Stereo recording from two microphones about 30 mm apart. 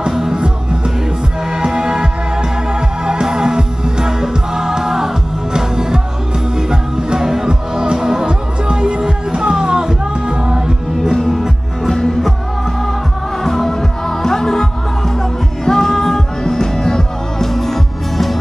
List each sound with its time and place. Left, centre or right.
1.6 s music: centre
3.1 s music: right
7.4 s music: right
8.3 s music: right
11.1 s music: centre
11.9 s music: centre
13.4 s music: centre